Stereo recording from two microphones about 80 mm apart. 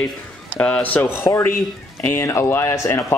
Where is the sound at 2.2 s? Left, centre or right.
Left.